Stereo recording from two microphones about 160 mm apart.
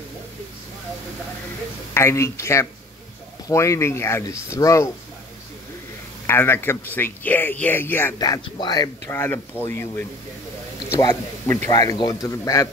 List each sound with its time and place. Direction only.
2.0 s speech: 15° left (ahead or behind)
6.2 s speech: 15° left (ahead or behind)
8.2 s a man's voice: 25° left (ahead or behind)